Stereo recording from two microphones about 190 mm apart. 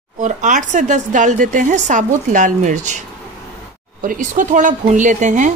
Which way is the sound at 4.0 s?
45° right (ahead or behind).